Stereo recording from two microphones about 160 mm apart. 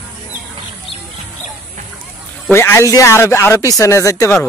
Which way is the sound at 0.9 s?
35° left (ahead or behind).